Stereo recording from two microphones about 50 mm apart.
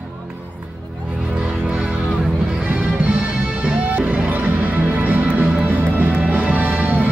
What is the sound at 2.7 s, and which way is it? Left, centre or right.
Music, right.